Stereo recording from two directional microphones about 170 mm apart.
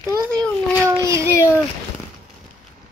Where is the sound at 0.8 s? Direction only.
15° right (ahead or behind).